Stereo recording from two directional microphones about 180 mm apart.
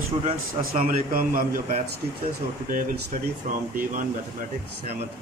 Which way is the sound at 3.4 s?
50° right (ahead or behind).